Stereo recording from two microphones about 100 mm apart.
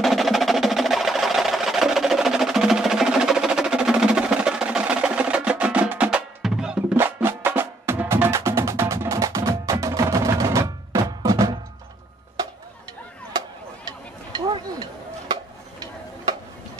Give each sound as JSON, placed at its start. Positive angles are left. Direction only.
{"t": 0.0, "sound": "music", "side_deg": 0}
{"t": 7.0, "sound": "music", "side_deg": -20}
{"t": 13.8, "sound": "a sound", "side_deg": -45}